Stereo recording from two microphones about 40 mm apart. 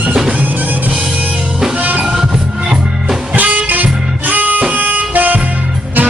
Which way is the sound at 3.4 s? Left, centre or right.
Right.